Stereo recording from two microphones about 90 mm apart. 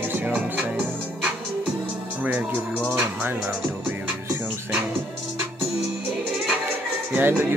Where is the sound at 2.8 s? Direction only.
25° right (ahead or behind).